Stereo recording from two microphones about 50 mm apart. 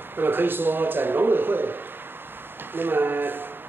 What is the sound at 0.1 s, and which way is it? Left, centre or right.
A man's voice, right.